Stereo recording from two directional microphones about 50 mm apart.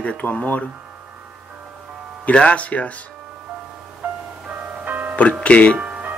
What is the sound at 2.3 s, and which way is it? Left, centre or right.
Speech, left.